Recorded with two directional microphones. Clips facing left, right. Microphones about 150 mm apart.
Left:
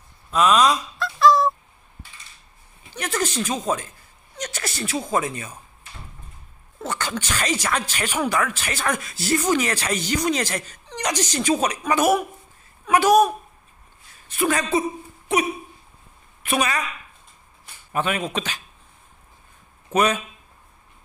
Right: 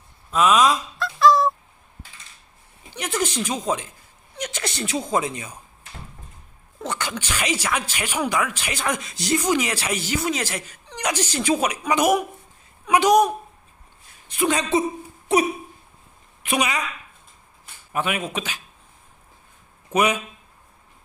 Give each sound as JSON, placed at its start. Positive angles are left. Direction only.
{"t": 0.3, "sound": "groan", "side_deg": -5}
{"t": 2.9, "sound": "a woman's voice", "side_deg": -15}
{"t": 6.8, "sound": "speech", "side_deg": -15}
{"t": 14.3, "sound": "a woman's voice", "side_deg": -20}
{"t": 16.4, "sound": "a woman's voice", "side_deg": -15}
{"t": 17.9, "sound": "speech", "side_deg": -10}
{"t": 19.9, "sound": "speech", "side_deg": -15}